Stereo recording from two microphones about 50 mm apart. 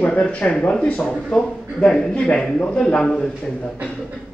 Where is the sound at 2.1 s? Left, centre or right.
Left.